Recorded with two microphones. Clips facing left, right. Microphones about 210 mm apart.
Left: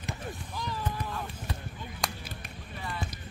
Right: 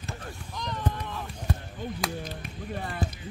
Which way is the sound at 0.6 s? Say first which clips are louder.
Right 4 dB; 5° left (ahead or behind).